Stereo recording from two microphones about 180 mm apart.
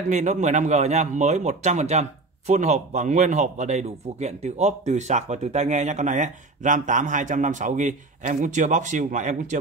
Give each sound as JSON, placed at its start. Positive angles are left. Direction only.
{"t": 0.1, "sound": "speech", "side_deg": -40}